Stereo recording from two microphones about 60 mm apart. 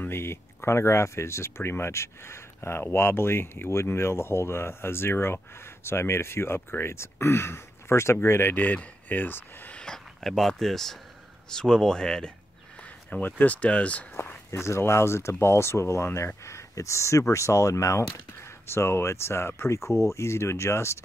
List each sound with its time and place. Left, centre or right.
0.0 s speech: left
9.8 s speech: centre
13.1 s speech: left
14.5 s speech: left
18.4 s speech: left